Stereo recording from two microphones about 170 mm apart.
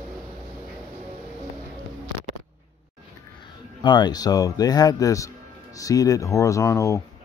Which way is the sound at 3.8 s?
25° left (ahead or behind).